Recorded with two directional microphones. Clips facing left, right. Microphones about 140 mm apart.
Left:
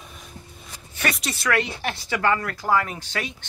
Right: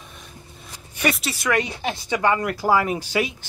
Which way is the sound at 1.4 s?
20° right (ahead or behind).